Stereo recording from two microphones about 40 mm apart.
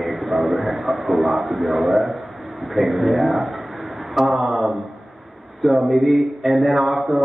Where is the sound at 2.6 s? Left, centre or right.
Centre.